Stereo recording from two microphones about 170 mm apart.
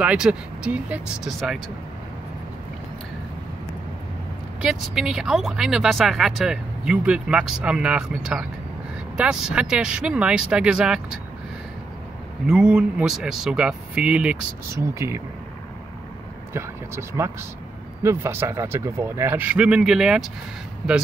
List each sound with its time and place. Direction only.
0.0 s speech: 5° right (ahead or behind)
4.6 s speech: 5° right (ahead or behind)
12.4 s speech: 5° right (ahead or behind)
16.5 s speech: 15° right (ahead or behind)